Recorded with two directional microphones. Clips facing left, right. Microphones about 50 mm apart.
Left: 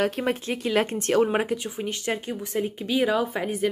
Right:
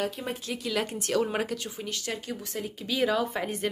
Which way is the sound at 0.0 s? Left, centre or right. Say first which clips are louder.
Left 7 dB; left.